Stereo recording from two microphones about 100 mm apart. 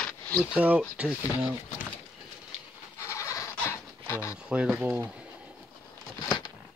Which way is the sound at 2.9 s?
30° left (ahead or behind).